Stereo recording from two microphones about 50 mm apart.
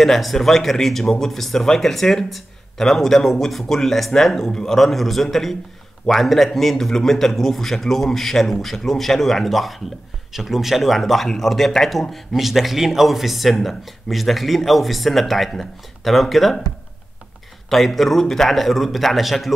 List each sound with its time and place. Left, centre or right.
0.0 s speech: centre
17.6 s speech: centre